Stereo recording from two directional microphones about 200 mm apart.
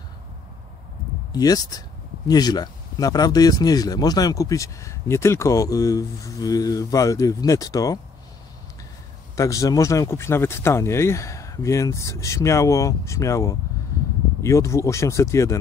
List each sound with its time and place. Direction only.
1.3 s speech: 20° left (ahead or behind)
9.3 s speech: 15° left (ahead or behind)